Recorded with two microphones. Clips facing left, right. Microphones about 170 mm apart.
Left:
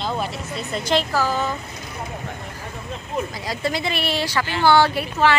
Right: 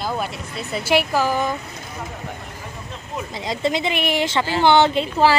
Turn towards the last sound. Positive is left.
turn(degrees=-20)  # may be behind; listen again after turning